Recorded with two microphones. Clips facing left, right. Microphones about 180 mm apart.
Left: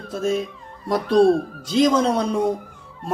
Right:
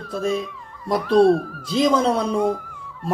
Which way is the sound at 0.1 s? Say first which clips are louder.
Left 1 dB; centre (ahead or behind).